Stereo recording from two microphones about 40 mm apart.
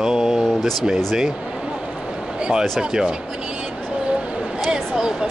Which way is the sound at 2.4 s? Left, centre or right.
Right.